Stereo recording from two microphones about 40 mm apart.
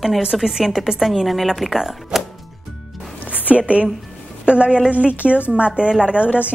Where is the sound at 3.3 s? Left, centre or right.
Right.